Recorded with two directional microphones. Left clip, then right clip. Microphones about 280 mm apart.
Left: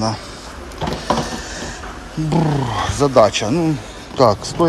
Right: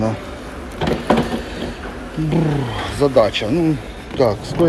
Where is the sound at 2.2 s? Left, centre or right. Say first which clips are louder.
Left 2 dB; centre.